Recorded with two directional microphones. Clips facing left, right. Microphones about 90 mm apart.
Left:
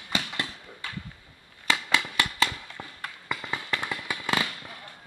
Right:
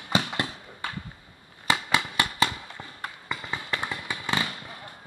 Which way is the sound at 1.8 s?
15° right (ahead or behind).